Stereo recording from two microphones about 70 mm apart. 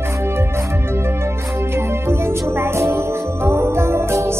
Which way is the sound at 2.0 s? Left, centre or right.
Right.